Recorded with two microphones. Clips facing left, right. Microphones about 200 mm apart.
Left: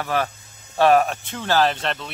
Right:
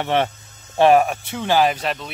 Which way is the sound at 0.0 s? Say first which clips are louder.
Right 4 dB; 25° right (ahead or behind).